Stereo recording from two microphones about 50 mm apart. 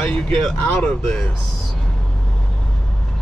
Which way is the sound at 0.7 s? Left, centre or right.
Centre.